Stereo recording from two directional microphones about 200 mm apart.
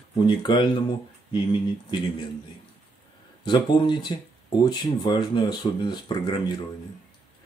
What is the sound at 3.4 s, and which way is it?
Speech, 25° left (ahead or behind).